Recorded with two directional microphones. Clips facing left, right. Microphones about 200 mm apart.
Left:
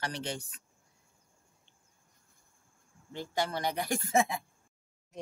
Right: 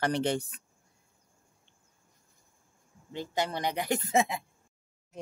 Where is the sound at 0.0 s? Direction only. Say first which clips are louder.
Right 9 dB; 60° right (ahead or behind).